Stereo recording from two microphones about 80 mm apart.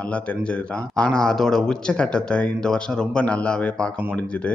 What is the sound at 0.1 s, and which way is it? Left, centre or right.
Speech, centre.